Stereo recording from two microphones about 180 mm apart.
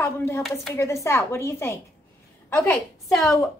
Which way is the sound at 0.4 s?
Centre (ahead or behind).